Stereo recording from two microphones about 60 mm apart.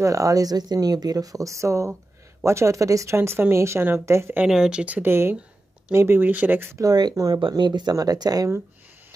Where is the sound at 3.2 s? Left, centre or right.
Right.